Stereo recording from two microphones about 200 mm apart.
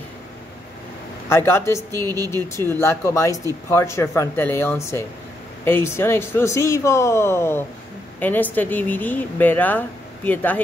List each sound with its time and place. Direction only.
1.3 s speech: 10° left (ahead or behind)
1.9 s speech: 20° right (ahead or behind)
2.3 s speech: 15° left (ahead or behind)